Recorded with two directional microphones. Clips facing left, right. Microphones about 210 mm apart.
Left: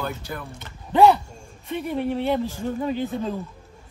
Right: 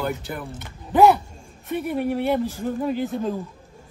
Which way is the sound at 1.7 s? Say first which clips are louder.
Right 1 dB; 10° right (ahead or behind).